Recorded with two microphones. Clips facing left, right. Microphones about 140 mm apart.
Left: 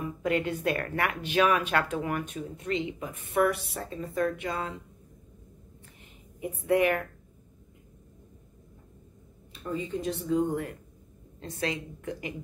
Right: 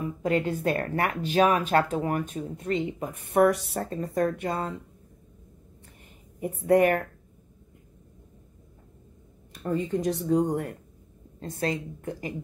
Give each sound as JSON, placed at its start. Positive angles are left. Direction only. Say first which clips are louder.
{"t": 0.2, "sound": "speech", "louder": "right 2 dB", "side_deg": -40}
{"t": 3.3, "sound": "a woman's voice", "louder": "right 5 dB", "side_deg": -60}
{"t": 6.4, "sound": "a woman's voice", "louder": "right 4 dB", "side_deg": -50}
{"t": 9.6, "sound": "a woman's voice", "louder": "right 5 dB", "side_deg": -60}
{"t": 11.3, "sound": "a woman's voice", "louder": "right 3 dB", "side_deg": -45}